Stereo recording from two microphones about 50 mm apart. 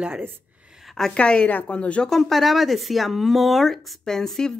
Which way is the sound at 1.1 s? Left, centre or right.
Left.